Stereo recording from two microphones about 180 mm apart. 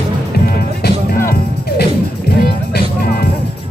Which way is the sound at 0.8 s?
55° left (ahead or behind).